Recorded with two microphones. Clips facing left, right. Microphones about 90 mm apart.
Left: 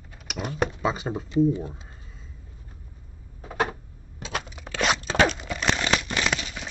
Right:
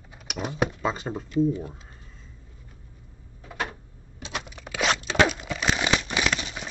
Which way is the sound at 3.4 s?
30° left (ahead or behind).